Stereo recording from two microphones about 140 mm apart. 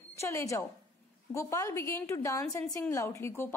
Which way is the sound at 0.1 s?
20° left (ahead or behind).